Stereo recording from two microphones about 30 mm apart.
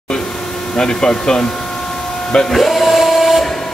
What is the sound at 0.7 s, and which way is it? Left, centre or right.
Speech, left.